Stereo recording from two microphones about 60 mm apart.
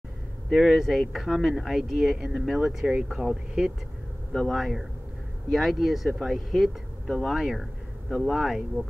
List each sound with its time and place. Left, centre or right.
0.5 s speech: centre
4.3 s speech: centre
8.8 s speech: right